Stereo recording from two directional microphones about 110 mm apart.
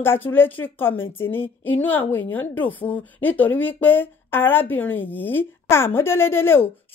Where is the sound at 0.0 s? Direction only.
20° left (ahead or behind).